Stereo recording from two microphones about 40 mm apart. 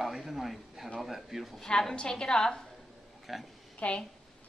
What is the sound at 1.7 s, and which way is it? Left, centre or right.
Speech, centre.